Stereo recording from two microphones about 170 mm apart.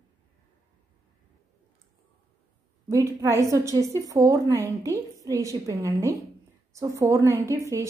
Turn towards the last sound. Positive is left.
turn(degrees=-15)  # may be behind; listen again after turning